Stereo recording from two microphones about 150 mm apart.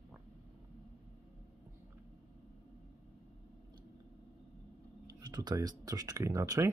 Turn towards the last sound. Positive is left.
turn(degrees=-20)  # may be behind; listen again after turning